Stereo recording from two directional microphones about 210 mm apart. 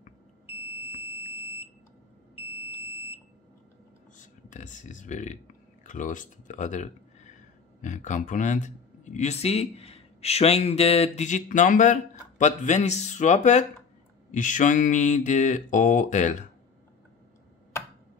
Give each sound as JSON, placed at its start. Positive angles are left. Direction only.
{"t": 2.3, "sound": "smoke detector", "side_deg": -10}
{"t": 4.2, "sound": "speech", "side_deg": 35}